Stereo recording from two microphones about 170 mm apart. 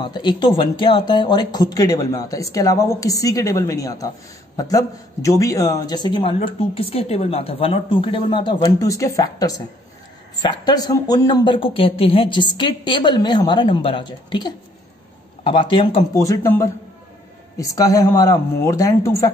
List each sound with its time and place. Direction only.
0.0 s speech: 25° left (ahead or behind)
16.1 s speech: 20° left (ahead or behind)